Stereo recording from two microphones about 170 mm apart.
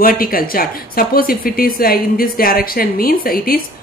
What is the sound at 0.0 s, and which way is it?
Speech, 60° left (ahead or behind).